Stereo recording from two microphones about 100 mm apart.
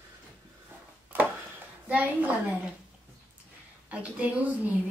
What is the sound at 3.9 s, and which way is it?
Speech, 15° right (ahead or behind).